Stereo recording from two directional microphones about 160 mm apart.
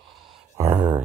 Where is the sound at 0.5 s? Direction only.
15° right (ahead or behind).